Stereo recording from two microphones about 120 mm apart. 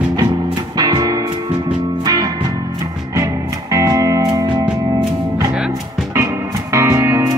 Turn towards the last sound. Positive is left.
turn(degrees=-25)  # may be behind; listen again after turning